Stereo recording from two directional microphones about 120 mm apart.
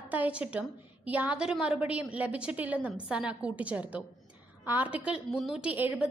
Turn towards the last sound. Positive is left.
turn(degrees=-15)  # may be behind; listen again after turning